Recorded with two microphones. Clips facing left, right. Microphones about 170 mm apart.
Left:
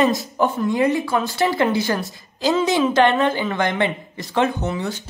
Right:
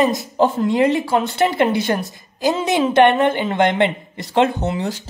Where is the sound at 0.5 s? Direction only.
25° right (ahead or behind).